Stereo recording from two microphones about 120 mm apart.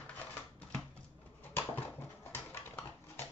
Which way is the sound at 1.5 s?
15° left (ahead or behind).